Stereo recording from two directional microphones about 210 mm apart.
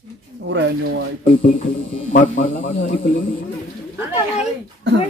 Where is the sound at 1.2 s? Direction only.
35° left (ahead or behind).